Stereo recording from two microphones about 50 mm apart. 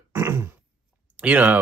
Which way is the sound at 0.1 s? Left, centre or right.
Right.